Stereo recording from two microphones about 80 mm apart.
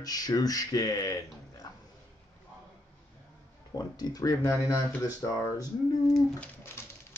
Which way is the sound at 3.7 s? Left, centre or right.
Left.